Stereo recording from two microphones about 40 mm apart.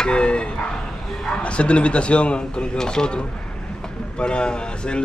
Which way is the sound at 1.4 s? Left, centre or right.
Left.